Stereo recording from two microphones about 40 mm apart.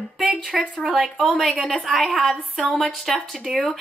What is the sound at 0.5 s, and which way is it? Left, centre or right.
Speech, centre.